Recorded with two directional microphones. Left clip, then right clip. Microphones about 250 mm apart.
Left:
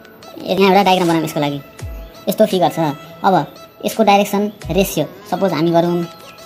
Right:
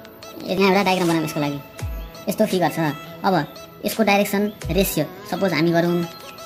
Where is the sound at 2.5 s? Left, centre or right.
Centre.